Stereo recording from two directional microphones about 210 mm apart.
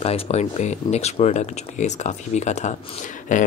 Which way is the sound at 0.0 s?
30° left (ahead or behind).